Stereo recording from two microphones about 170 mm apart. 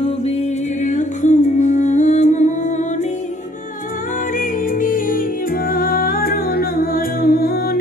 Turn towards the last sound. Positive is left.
turn(degrees=60)  # may be behind; listen again after turning